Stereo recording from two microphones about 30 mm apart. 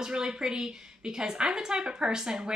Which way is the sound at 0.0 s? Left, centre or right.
Right.